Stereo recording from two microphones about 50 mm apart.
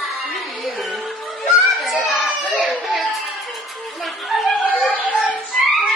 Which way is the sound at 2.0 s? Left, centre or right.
Centre.